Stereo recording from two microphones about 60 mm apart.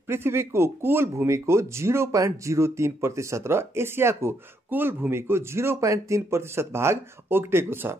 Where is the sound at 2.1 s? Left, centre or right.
Right.